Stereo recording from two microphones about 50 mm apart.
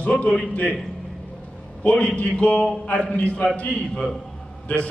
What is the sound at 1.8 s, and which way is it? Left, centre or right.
A man's voice, left.